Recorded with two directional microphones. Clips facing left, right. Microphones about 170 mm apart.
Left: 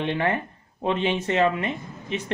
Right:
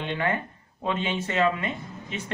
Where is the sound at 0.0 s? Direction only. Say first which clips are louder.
Left 3 dB; 30° left (ahead or behind).